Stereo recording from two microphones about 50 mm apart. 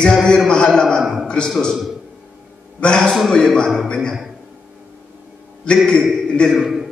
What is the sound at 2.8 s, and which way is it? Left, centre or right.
A man's voice, centre.